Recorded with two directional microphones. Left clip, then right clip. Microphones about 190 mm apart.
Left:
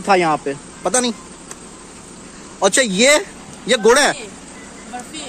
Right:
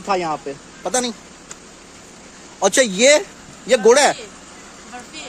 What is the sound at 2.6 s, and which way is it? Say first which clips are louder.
Speech: even; 5° right (ahead or behind).